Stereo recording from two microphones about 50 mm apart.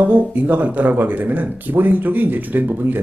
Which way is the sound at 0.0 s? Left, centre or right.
Right.